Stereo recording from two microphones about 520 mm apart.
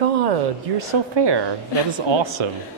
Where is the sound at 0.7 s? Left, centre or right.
Right.